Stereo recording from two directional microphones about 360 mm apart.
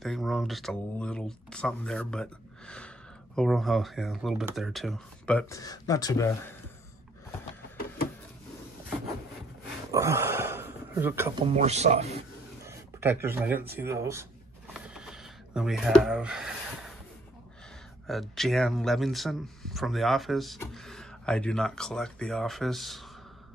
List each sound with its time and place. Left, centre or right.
0.0 s speech: centre
9.8 s a sound: centre
11.5 s speech: centre
12.6 s speech: centre
14.7 s a sound: centre
18.0 s speech: centre